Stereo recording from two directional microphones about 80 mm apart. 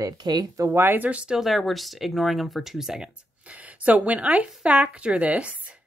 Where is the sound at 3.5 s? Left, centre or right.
Centre.